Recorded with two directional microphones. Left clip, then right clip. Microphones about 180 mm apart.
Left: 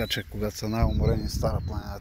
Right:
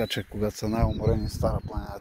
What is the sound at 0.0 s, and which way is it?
Speech, 20° right (ahead or behind).